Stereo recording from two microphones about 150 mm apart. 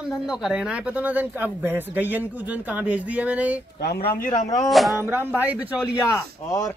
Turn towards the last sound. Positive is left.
turn(degrees=20)  # may be behind; listen again after turning